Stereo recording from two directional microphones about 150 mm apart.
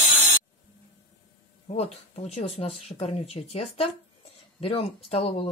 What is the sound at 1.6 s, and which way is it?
Speech, 50° left (ahead or behind).